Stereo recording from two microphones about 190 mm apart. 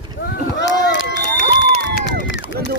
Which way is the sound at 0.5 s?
70° left (ahead or behind).